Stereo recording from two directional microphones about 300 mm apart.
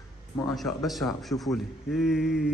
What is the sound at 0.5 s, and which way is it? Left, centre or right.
A man's voice, centre.